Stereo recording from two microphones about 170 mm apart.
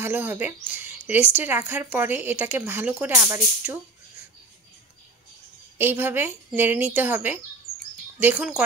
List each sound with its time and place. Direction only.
0.0 s speech: 10° right (ahead or behind)
5.8 s speech: 10° right (ahead or behind)